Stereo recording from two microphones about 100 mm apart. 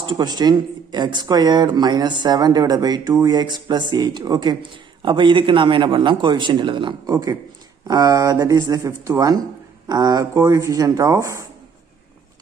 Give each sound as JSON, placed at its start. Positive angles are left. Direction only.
{"t": 0.0, "sound": "speech", "side_deg": -50}
{"t": 7.1, "sound": "speech", "side_deg": -35}